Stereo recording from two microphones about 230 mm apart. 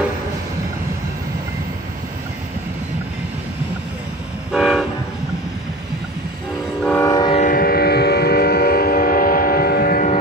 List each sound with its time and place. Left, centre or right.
4.5 s train: centre
6.8 s train: centre
7.3 s train: left